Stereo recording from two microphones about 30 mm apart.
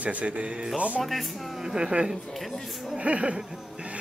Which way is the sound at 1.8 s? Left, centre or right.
Right.